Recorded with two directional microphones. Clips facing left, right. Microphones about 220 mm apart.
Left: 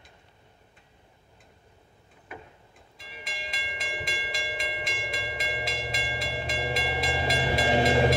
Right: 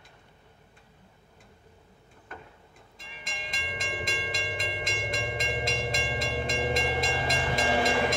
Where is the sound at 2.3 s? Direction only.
10° left (ahead or behind).